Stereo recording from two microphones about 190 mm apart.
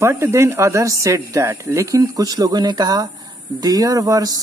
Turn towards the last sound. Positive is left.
turn(degrees=-20)  # may be behind; listen again after turning